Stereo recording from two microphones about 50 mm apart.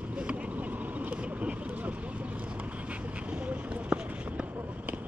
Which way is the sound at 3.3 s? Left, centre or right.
Right.